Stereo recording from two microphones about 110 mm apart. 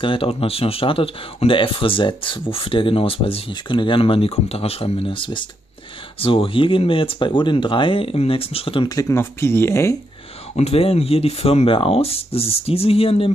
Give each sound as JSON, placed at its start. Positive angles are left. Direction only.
{"t": 0.0, "sound": "speech", "side_deg": 55}
{"t": 8.8, "sound": "speech", "side_deg": 30}
{"t": 10.5, "sound": "speech", "side_deg": 70}